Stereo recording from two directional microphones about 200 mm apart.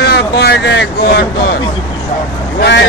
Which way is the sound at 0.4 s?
55° left (ahead or behind).